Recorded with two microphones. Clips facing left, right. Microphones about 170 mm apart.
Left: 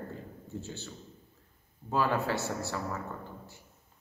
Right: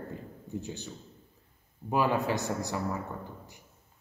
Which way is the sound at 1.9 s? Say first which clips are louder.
Right 2 dB; 15° right (ahead or behind).